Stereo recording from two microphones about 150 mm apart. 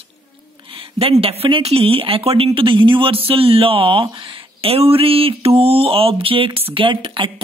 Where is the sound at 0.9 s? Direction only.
40° right (ahead or behind).